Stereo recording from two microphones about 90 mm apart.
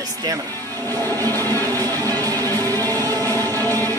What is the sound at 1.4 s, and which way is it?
Music, 25° left (ahead or behind).